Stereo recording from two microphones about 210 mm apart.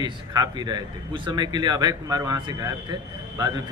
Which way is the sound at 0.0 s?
20° right (ahead or behind).